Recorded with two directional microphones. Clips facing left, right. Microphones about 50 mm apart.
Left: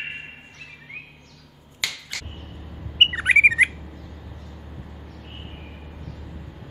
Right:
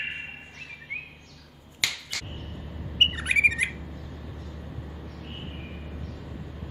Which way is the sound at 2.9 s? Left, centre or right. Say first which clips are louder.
Left 6 dB; left.